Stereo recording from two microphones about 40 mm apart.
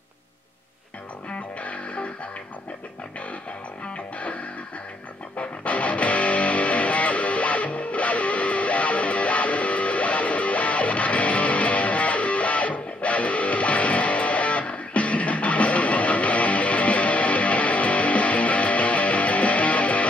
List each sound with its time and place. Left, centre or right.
1.6 s music: left
3.9 s music: left
5.4 s music: left